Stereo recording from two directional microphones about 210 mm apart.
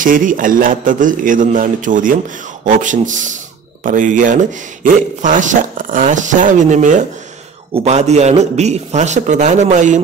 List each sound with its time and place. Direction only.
0.0 s a man's voice: 40° right (ahead or behind)